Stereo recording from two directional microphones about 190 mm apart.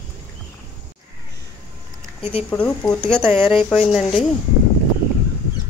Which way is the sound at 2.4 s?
10° left (ahead or behind).